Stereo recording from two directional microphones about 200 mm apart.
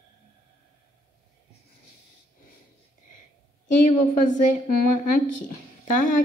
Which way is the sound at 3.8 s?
40° left (ahead or behind).